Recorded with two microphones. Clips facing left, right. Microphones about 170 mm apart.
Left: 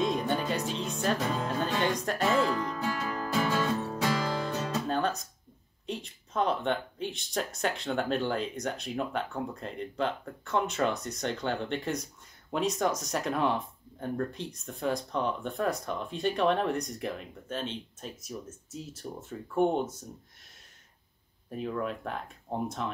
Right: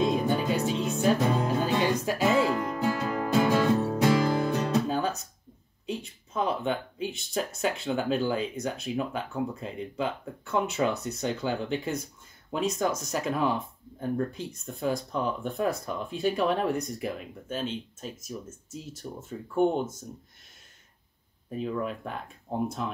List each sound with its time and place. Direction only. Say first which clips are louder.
0.0 s music: right 3 dB; 5° right (ahead or behind)
2.5 s music: right 4 dB; 20° right (ahead or behind)
4.8 s music: right 1 dB; 5° right (ahead or behind)
5.9 s speech: right 3 dB; centre (ahead or behind)
21.5 s speech: right 2 dB; centre (ahead or behind)